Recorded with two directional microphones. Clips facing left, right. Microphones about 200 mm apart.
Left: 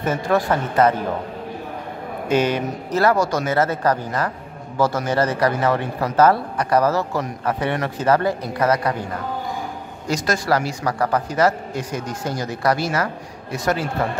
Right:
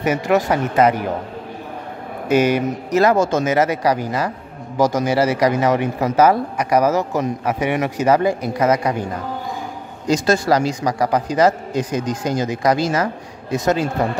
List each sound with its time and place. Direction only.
0.0 s a man's voice: 15° right (ahead or behind)
2.3 s a man's voice: 10° right (ahead or behind)
10.0 s a man's voice: 25° right (ahead or behind)